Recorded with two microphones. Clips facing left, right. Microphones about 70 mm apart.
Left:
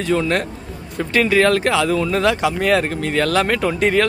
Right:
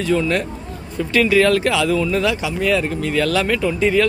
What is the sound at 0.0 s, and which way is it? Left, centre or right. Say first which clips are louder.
Speech: even; left.